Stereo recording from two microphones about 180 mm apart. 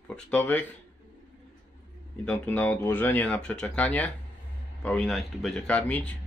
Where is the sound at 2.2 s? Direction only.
10° left (ahead or behind).